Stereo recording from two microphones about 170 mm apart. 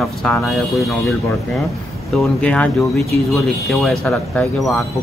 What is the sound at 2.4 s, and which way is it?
Speech, 5° left (ahead or behind).